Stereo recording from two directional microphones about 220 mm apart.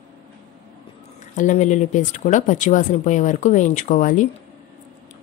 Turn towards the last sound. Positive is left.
turn(degrees=35)  # may be behind; listen again after turning